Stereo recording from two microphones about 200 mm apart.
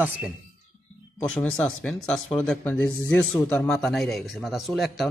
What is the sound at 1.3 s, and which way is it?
Speech, 5° left (ahead or behind).